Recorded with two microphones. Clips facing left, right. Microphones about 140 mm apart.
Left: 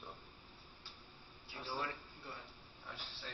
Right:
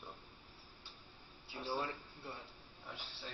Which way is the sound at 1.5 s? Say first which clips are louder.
Right 4 dB; 15° right (ahead or behind).